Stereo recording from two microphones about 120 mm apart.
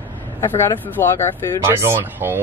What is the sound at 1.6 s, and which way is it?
Speech, 20° right (ahead or behind).